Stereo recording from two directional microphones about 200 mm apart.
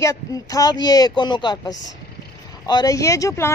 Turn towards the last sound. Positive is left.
turn(degrees=15)  # may be behind; listen again after turning